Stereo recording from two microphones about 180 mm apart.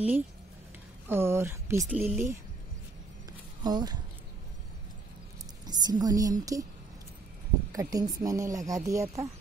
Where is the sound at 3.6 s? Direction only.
20° right (ahead or behind).